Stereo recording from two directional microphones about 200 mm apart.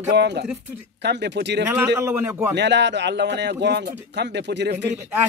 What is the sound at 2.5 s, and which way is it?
Speech, 60° right (ahead or behind).